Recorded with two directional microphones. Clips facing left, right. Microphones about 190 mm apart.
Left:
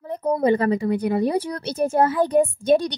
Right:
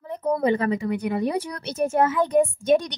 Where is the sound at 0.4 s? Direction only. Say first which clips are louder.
Left 5 dB; 35° left (ahead or behind).